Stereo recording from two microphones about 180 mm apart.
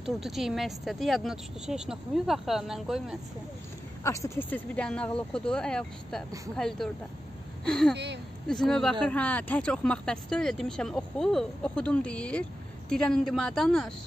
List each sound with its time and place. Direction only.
0.0 s speech: centre (ahead or behind)
4.0 s speech: 15° left (ahead or behind)
7.9 s speech: 70° right (ahead or behind)
8.5 s speech: 5° left (ahead or behind)